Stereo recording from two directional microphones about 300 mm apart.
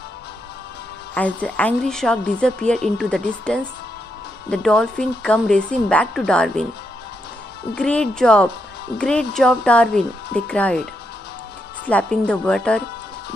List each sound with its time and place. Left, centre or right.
1.1 s a woman's voice: centre
7.7 s a woman's voice: centre
11.9 s a woman's voice: centre